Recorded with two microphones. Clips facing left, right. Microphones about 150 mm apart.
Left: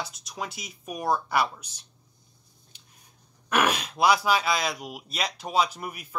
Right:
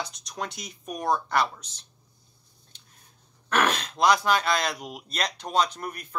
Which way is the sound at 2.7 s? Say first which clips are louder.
Even; 10° left (ahead or behind).